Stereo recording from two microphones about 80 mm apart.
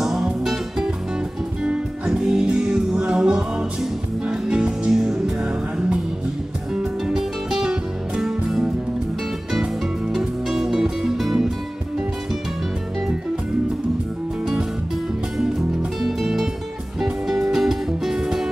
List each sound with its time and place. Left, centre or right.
0.0 s music: centre
14.4 s music: centre
16.0 s music: centre